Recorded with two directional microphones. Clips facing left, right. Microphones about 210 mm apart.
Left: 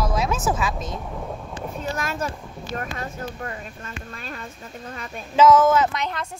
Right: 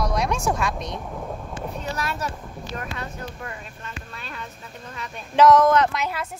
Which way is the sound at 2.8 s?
45° left (ahead or behind).